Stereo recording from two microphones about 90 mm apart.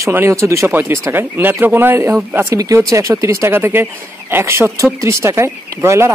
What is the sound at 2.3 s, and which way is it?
Speech, 35° right (ahead or behind).